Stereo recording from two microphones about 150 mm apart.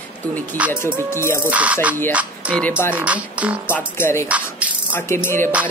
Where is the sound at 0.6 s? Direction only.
10° right (ahead or behind).